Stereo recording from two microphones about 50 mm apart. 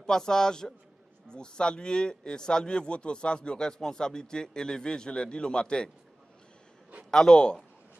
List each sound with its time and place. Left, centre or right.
0.0 s speech: centre
7.1 s speech: centre